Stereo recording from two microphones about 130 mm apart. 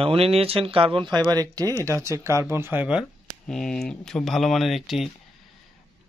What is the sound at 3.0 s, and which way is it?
Speech, 5° left (ahead or behind).